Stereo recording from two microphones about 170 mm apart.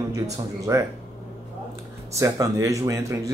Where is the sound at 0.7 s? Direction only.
15° right (ahead or behind).